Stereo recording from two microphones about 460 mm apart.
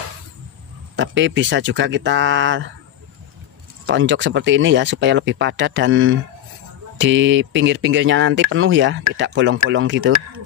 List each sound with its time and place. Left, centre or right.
0.9 s speech: right
3.8 s speech: right